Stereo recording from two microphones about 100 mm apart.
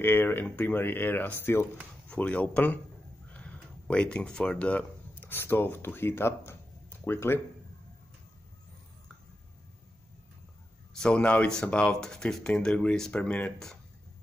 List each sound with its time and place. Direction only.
0.0 s speech: 20° left (ahead or behind)
11.0 s speech: 10° left (ahead or behind)